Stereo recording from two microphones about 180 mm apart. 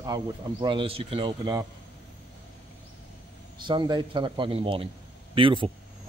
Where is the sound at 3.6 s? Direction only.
25° right (ahead or behind).